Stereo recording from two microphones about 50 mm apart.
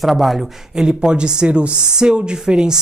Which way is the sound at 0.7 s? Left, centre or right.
Centre.